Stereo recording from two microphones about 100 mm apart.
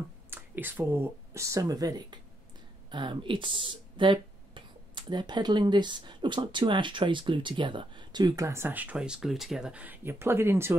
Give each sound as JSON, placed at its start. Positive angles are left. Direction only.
{"t": 0.3, "sound": "speech", "side_deg": -20}
{"t": 8.5, "sound": "speech", "side_deg": -25}